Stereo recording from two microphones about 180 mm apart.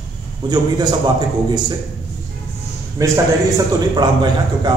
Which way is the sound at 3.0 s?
20° right (ahead or behind).